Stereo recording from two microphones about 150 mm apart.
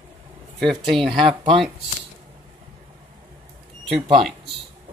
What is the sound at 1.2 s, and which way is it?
Speech, 30° right (ahead or behind).